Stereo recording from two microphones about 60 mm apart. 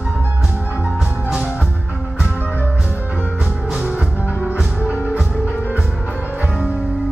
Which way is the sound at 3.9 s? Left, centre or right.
Centre.